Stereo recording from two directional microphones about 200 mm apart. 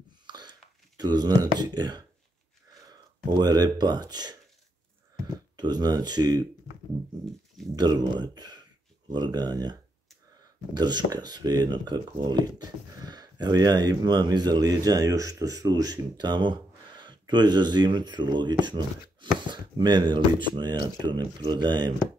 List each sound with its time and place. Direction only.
0.3 s a sound: 20° right (ahead or behind)
2.9 s speech: 20° right (ahead or behind)
5.6 s speech: 20° right (ahead or behind)
7.7 s speech: 20° right (ahead or behind)